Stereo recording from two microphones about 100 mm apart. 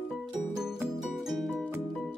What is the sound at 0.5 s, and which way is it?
Music, 5° right (ahead or behind).